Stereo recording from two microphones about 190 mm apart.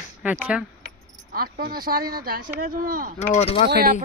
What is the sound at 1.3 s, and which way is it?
Speech, 50° right (ahead or behind).